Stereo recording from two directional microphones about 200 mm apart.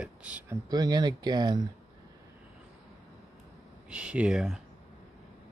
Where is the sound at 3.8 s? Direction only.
5° right (ahead or behind).